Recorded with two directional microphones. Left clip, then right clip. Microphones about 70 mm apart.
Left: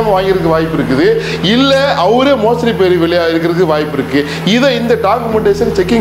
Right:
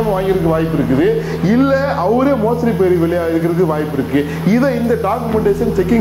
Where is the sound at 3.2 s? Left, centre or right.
Centre.